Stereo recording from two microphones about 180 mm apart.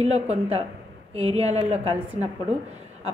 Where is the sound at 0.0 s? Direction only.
35° right (ahead or behind).